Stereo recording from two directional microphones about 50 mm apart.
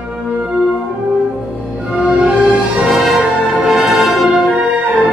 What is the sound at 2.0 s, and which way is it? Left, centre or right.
Music, centre.